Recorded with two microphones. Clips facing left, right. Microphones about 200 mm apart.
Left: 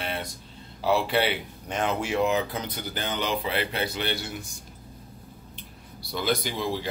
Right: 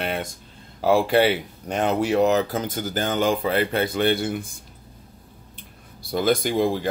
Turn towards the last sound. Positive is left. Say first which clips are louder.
# right 8 dB
turn(degrees=-50)  # may be behind; listen again after turning